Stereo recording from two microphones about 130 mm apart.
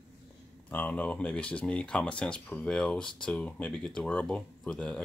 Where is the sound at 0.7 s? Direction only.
10° left (ahead or behind).